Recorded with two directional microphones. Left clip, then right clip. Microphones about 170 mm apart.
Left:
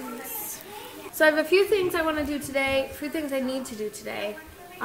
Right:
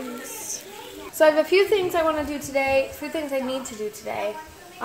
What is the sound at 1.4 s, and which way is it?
A woman's voice, 5° left (ahead or behind).